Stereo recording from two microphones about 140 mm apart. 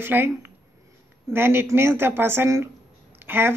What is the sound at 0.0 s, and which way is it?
Speech, 15° right (ahead or behind).